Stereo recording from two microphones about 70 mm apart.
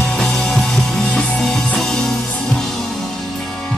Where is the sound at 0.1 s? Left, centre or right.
Centre.